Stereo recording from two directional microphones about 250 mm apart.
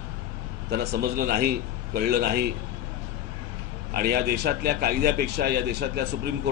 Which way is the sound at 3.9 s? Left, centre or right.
Right.